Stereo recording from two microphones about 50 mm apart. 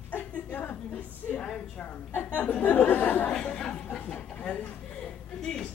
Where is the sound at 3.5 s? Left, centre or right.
Centre.